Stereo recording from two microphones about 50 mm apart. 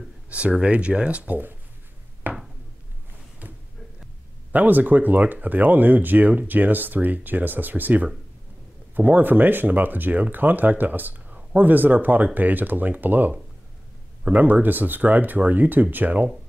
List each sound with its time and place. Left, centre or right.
0.3 s speech: right
2.3 s a sound: right
4.5 s speech: right